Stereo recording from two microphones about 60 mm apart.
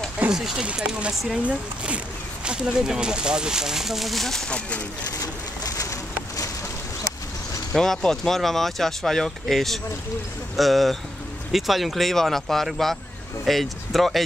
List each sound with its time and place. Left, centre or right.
0.3 s speech: centre
4.5 s speech: centre
5.2 s bird: left
7.7 s speech: centre